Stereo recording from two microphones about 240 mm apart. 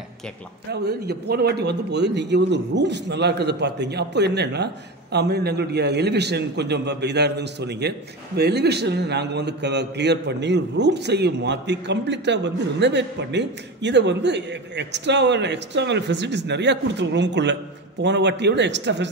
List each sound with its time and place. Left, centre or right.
0.7 s a man's voice: right